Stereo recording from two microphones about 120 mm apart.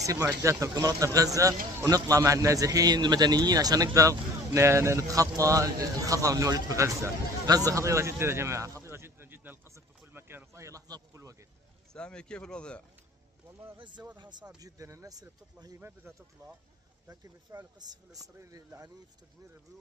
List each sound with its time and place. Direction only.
0.0 s speech: 25° right (ahead or behind)
11.9 s speech: 5° left (ahead or behind)
13.7 s speech: 40° right (ahead or behind)
14.6 s speech: 25° right (ahead or behind)
17.1 s speech: 30° right (ahead or behind)